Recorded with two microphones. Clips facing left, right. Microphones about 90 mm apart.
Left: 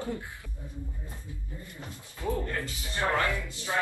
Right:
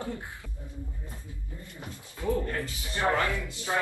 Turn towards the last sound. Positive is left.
turn(degrees=-20)  # may be behind; listen again after turning